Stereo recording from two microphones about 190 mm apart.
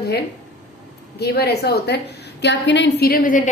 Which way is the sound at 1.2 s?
60° left (ahead or behind).